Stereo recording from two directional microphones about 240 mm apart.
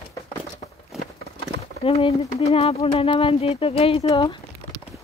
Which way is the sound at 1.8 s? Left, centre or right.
Left.